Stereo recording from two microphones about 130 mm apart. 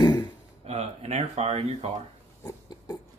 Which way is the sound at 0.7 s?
55° right (ahead or behind).